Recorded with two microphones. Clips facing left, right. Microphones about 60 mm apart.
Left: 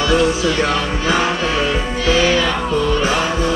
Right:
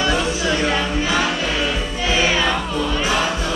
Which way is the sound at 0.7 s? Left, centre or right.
Centre.